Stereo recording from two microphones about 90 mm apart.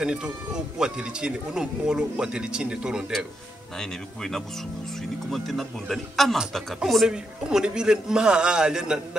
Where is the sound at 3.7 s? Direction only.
5° left (ahead or behind).